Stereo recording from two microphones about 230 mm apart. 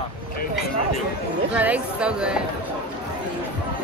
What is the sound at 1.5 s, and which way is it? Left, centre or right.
Speech, centre.